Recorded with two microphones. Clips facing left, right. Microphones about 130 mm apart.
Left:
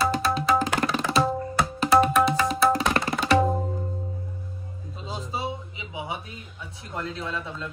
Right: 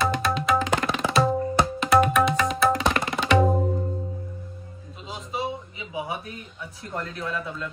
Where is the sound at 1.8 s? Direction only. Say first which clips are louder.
Left 1 dB; 30° left (ahead or behind).